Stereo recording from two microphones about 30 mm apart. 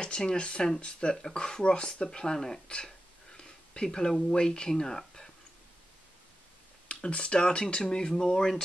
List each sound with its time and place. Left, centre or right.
0.0 s speech: left
6.9 s speech: left